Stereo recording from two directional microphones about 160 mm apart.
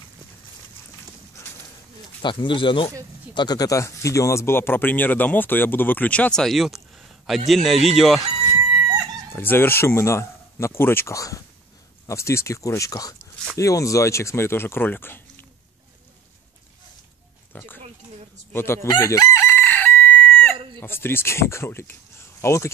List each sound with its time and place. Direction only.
1.4 s a sound: 20° left (ahead or behind)
2.2 s speech: 30° left (ahead or behind); by 8.2 s centre (ahead or behind)
9.3 s speech: 15° left (ahead or behind)
17.5 s oink: 10° left (ahead or behind)
18.5 s speech: 15° left (ahead or behind)
18.9 s chicken: 20° left (ahead or behind)
20.8 s speech: 15° left (ahead or behind)